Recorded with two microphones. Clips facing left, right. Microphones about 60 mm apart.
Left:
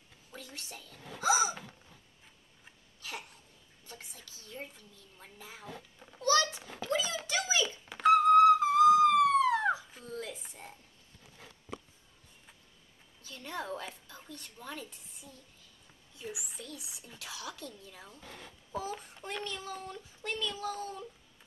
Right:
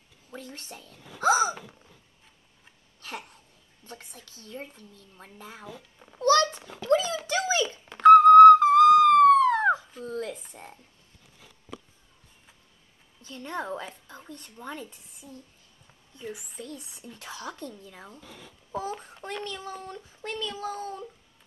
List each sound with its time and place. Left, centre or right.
0.3 s speech: right
3.0 s a sound: right
3.8 s a child's voice: right
7.2 s dog: right
8.0 s a sound: right
10.0 s speech: right
13.2 s speech: right
16.3 s speech: centre
16.5 s speech: right
18.2 s speech: centre
18.8 s speech: right
19.5 s speech: right